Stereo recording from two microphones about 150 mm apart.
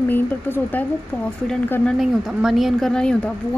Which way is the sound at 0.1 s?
10° left (ahead or behind).